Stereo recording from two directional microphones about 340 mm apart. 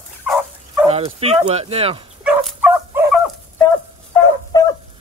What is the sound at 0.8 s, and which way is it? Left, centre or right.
Speech, centre.